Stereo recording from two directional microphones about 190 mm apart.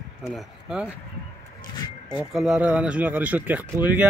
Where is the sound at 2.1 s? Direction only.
5° right (ahead or behind).